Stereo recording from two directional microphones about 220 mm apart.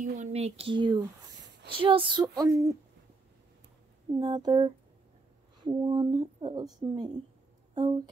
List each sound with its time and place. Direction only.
0.0 s speech: 35° right (ahead or behind); by 2.8 s 15° right (ahead or behind)
4.1 s speech: 20° right (ahead or behind)